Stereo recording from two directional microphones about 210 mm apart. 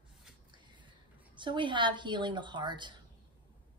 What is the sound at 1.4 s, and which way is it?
Speech, 20° right (ahead or behind).